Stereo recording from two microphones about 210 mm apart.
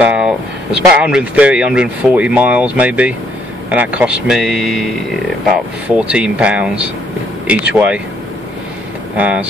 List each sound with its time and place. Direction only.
0.0 s speech: 5° right (ahead or behind)
9.1 s speech: 5° right (ahead or behind)